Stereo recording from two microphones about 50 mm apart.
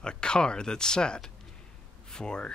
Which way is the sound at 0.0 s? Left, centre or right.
Centre.